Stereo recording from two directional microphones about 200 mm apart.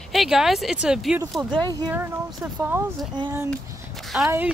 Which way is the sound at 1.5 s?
20° right (ahead or behind).